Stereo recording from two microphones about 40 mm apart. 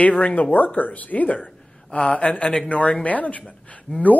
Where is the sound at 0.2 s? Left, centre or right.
Left.